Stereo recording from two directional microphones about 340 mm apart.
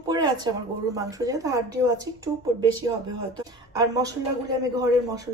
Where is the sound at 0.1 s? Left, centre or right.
Centre.